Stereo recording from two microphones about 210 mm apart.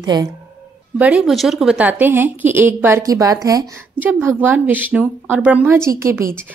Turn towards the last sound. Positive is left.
turn(degrees=-15)  # may be behind; listen again after turning